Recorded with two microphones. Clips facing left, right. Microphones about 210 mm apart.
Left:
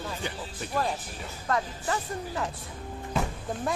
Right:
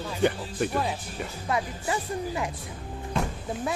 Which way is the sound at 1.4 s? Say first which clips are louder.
Even; 10° right (ahead or behind).